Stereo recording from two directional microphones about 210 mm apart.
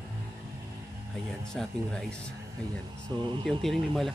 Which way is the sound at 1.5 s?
5° left (ahead or behind).